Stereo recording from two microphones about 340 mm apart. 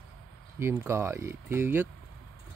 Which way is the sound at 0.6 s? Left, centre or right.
Centre.